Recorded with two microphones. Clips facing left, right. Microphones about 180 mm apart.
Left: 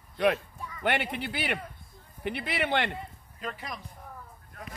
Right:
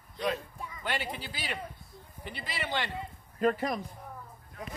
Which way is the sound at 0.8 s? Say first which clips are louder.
Left 6 dB; 60° left (ahead or behind).